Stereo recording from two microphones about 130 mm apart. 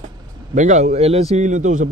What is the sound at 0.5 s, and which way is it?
A man's voice, 65° right (ahead or behind).